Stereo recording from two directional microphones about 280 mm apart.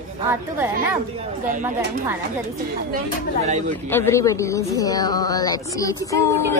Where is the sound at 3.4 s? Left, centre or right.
Right.